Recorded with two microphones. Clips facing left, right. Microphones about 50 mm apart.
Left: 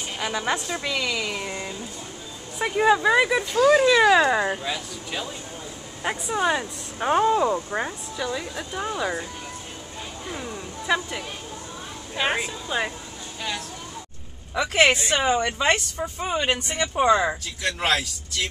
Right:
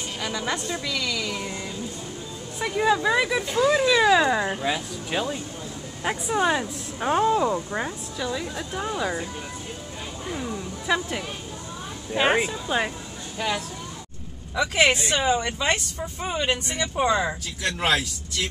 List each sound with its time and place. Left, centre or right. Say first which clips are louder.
0.2 s a woman's voice: left 3 dB; centre
4.6 s speech: right 3 dB; centre
6.2 s speech: right 1 dB; centre
10.2 s a sound: right 3 dB; centre
12.1 s speech: right 4 dB; centre
14.5 s speech: left 1 dB; centre